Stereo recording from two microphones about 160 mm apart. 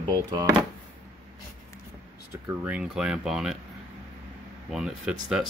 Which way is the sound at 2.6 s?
5° right (ahead or behind).